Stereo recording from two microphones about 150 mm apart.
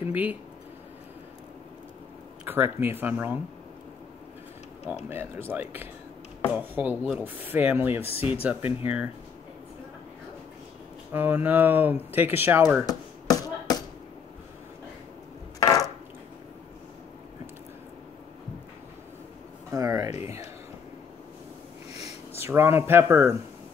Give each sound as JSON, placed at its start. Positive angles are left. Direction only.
{"t": 0.1, "sound": "speech", "side_deg": -10}
{"t": 2.4, "sound": "speech", "side_deg": -15}
{"t": 5.1, "sound": "speech", "side_deg": -15}
{"t": 8.0, "sound": "speech", "side_deg": 40}
{"t": 8.3, "sound": "speech", "side_deg": -10}
{"t": 11.1, "sound": "speech", "side_deg": -10}
{"t": 12.8, "sound": "a sound", "side_deg": 25}
{"t": 15.6, "sound": "a sound", "side_deg": 25}
{"t": 19.7, "sound": "speech", "side_deg": -20}
{"t": 22.4, "sound": "speech", "side_deg": -15}